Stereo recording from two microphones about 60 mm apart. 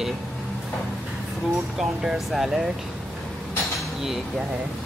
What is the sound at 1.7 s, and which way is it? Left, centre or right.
Speech, centre.